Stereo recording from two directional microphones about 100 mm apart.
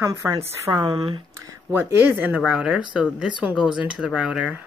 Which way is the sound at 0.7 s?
55° right (ahead or behind).